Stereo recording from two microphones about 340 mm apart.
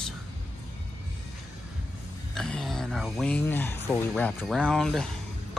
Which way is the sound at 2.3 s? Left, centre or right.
Centre.